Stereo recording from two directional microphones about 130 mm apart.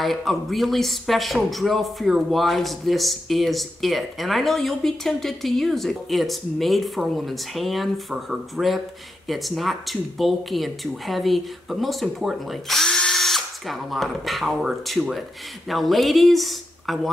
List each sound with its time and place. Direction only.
0.0 s speech: centre (ahead or behind)